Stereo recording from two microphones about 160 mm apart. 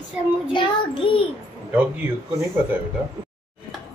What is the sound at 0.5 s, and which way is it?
Child singing, 30° left (ahead or behind).